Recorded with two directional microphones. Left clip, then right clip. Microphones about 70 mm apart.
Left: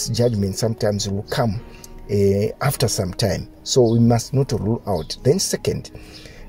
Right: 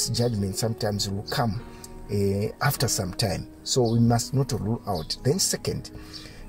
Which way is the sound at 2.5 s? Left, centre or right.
Left.